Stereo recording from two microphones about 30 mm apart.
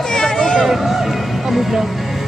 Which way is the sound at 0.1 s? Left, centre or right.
Left.